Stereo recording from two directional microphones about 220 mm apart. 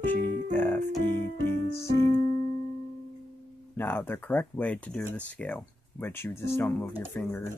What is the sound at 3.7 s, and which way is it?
Speech, 10° left (ahead or behind).